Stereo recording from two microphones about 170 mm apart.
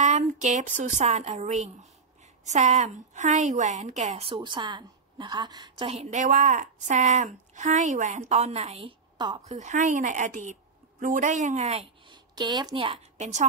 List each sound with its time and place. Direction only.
0.0 s a woman's voice: 45° right (ahead or behind)
9.4 s a woman's voice: 40° right (ahead or behind)
12.1 s a woman's voice: 25° right (ahead or behind); by 13.5 s 45° right (ahead or behind)